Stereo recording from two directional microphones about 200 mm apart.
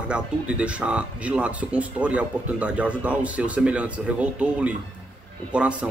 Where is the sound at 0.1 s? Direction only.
5° right (ahead or behind).